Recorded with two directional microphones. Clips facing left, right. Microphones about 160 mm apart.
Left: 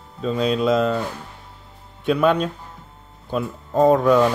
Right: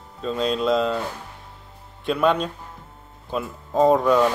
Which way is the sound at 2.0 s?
Centre (ahead or behind).